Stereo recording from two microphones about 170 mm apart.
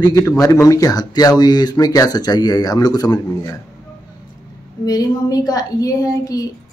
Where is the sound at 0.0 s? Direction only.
15° left (ahead or behind).